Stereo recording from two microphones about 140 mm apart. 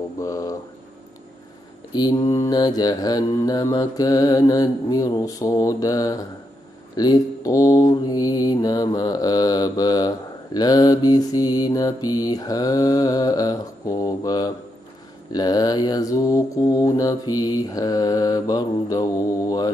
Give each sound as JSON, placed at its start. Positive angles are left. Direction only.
{"t": 0.2, "sound": "mantra", "side_deg": 25}
{"t": 1.9, "sound": "mantra", "side_deg": 30}